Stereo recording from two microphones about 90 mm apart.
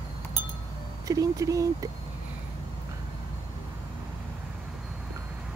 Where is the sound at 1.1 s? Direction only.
40° right (ahead or behind).